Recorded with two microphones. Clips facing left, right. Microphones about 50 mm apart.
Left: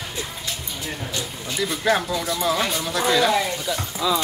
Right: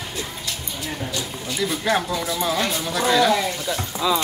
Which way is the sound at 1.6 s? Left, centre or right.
Centre.